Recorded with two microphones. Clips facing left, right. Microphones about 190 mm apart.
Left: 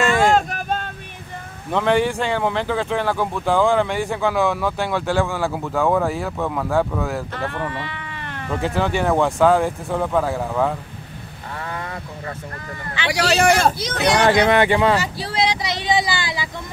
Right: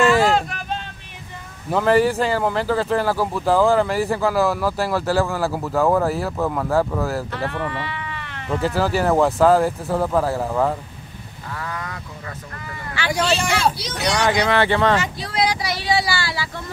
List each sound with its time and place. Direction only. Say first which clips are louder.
0.5 s vehicle: left 4 dB; 45° left (ahead or behind)
1.7 s speech: right 2 dB; 5° right (ahead or behind)
7.7 s cat: right 1 dB; 50° left (ahead or behind)
8.5 s speech: right 1 dB; centre (ahead or behind)
11.5 s a sound: left 1 dB; 30° left (ahead or behind)
13.1 s speech: left 3 dB; 75° left (ahead or behind)
13.5 s speech: left 4 dB; 50° left (ahead or behind)
14.5 s speech: left 2 dB; 15° left (ahead or behind)
15.0 s a sound: even; 30° left (ahead or behind)